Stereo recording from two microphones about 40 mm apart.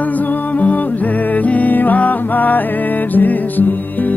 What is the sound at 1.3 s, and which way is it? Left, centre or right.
Music, left.